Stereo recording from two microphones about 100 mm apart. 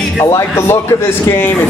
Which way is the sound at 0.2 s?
25° left (ahead or behind).